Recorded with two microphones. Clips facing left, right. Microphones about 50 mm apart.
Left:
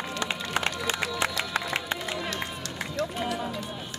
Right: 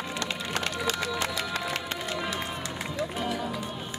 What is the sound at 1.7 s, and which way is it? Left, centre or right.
Music, left.